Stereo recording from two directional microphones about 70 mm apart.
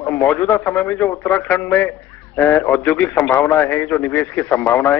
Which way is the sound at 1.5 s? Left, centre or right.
Left.